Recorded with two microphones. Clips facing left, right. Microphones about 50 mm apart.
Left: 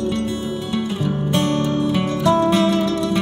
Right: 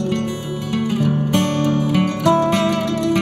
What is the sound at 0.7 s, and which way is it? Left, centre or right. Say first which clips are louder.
Music: right 5 dB; right.